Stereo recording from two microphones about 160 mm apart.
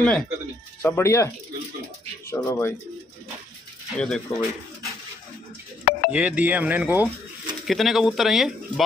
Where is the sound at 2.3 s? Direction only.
20° left (ahead or behind).